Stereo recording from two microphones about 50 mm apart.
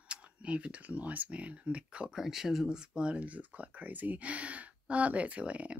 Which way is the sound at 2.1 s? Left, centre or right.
Centre.